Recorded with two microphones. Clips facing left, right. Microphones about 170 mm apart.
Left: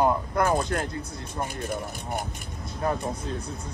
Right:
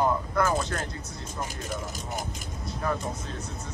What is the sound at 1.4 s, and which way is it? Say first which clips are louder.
Speech: left 4 dB; 60° left (ahead or behind).